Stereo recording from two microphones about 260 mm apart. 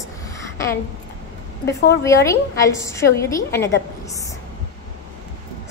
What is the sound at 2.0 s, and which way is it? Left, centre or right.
A woman's voice, centre.